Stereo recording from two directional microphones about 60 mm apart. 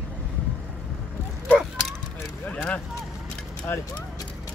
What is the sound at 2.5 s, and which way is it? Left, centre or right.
Speech, left.